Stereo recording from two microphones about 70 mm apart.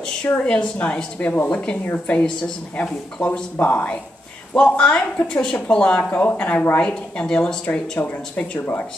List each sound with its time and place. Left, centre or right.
0.4 s a woman's voice: centre
6.0 s a woman's voice: left
8.5 s speech: left